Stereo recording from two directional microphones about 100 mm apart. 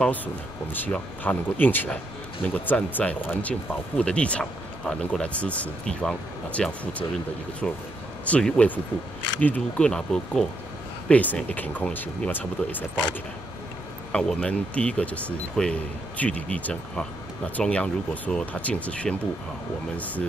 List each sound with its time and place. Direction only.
0.0 s speech: 15° left (ahead or behind)
14.1 s speech: 10° left (ahead or behind)